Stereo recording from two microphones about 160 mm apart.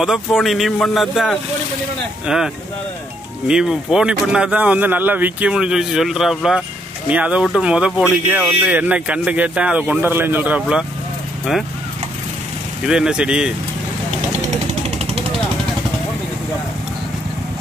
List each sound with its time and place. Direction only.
0.0 s speech: centre (ahead or behind)
12.8 s speech: 5° right (ahead or behind)
14.5 s vehicle: 40° right (ahead or behind)